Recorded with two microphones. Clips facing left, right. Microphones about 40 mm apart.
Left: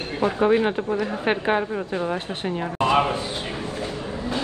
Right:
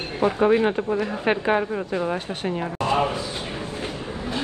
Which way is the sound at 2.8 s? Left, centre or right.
Left.